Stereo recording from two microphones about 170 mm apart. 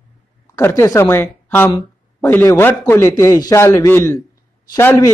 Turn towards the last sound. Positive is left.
turn(degrees=15)  # may be behind; listen again after turning